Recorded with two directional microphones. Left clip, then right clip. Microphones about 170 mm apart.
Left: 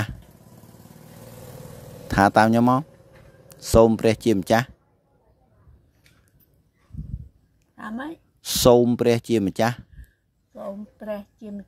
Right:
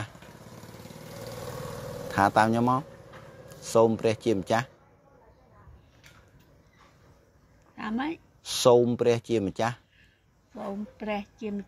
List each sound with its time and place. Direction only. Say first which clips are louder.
2.0 s speech: left 5 dB; 90° left
7.7 s a sound: right 1 dB; 30° left (ahead or behind)
8.6 s speech: left 4 dB; 90° left
11.1 s a woman's voice: even; 30° left (ahead or behind)